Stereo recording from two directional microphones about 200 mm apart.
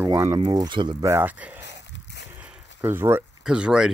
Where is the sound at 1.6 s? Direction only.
60° left (ahead or behind).